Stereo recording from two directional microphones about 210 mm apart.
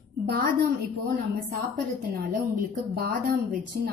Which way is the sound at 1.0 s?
40° right (ahead or behind).